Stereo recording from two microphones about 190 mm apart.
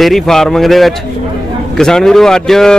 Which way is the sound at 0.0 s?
Centre (ahead or behind).